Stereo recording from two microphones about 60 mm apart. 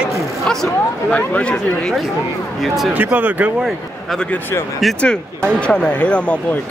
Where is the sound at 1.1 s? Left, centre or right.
Centre.